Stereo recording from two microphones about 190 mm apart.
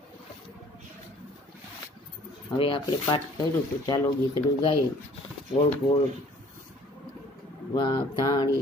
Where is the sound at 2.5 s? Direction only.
25° left (ahead or behind).